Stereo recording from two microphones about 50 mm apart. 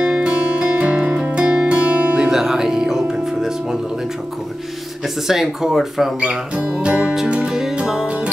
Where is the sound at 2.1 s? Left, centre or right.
Centre.